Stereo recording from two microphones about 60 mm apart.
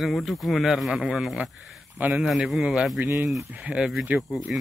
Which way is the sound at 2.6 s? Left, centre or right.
Centre.